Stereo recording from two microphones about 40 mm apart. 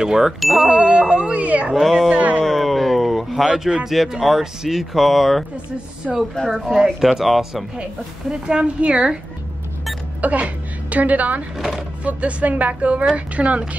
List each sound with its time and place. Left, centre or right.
0.0 s speech: centre
0.7 s speech: right
1.4 s a woman's voice: right
1.7 s speech: centre
2.1 s a woman's voice: right
2.4 s a sound: centre
3.8 s speech: centre
8.3 s speech: right
10.2 s a woman's voice: right
11.5 s speech: centre
12.0 s a woman's voice: right